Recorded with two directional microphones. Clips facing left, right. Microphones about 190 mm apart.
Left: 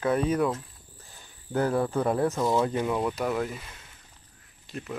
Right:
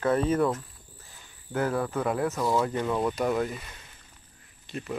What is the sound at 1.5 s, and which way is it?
Speech, 30° left (ahead or behind).